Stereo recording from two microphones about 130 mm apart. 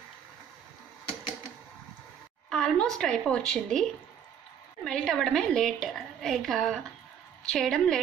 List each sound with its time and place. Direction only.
2.5 s a sound: 5° left (ahead or behind)
3.0 s speech: 5° left (ahead or behind)
4.8 s a woman's voice: 5° left (ahead or behind)